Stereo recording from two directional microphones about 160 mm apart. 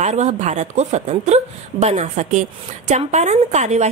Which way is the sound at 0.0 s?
45° right (ahead or behind).